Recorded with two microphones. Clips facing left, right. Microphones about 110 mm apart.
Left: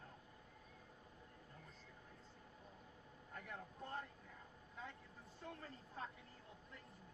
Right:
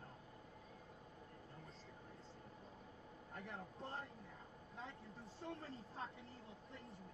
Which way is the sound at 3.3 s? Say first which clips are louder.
Right 1 dB; 30° right (ahead or behind).